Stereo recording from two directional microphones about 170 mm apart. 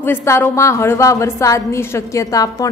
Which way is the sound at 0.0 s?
15° left (ahead or behind).